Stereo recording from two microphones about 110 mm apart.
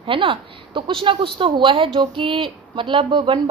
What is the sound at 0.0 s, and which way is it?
A woman's voice, 50° right (ahead or behind).